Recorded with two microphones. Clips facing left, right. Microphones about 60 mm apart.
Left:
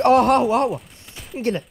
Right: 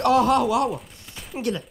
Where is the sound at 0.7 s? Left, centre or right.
Centre.